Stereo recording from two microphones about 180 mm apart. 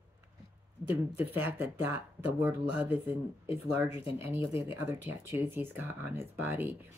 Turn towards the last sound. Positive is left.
turn(degrees=-10)  # may be behind; listen again after turning